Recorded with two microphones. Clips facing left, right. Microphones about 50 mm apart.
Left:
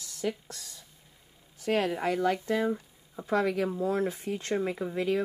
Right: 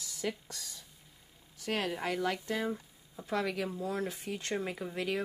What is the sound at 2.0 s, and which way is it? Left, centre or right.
Speech, left.